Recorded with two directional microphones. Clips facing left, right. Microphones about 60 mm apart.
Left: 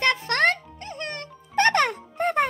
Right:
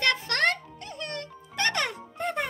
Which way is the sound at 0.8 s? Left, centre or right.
Left.